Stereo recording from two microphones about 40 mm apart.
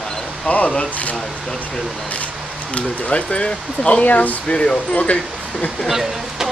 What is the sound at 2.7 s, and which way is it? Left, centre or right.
Speech, left.